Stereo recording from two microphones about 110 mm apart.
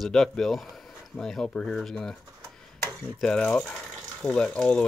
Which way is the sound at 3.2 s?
5° left (ahead or behind).